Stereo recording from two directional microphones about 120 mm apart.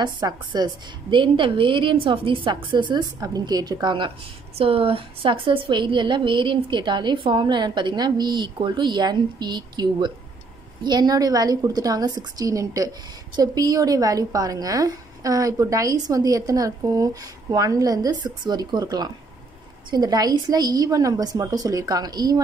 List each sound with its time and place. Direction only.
0.0 s a woman's voice: 35° right (ahead or behind)
4.6 s a woman's voice: 50° right (ahead or behind); by 22.4 s 35° right (ahead or behind)